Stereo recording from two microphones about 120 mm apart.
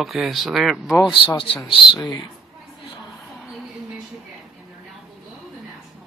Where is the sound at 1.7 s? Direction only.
45° left (ahead or behind).